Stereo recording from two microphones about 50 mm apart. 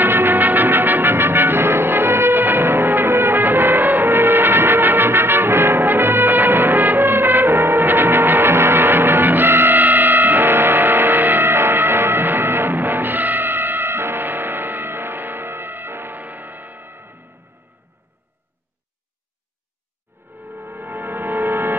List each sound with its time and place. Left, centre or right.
0.0 s music: right
20.4 s music: right